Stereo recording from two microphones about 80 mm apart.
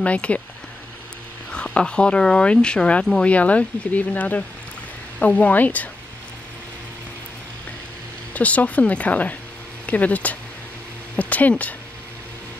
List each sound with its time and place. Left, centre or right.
0.0 s speech: centre
1.5 s speech: centre
8.3 s speech: centre